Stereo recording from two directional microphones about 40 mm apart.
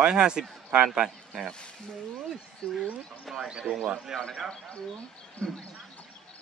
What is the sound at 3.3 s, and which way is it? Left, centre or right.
Speech, centre.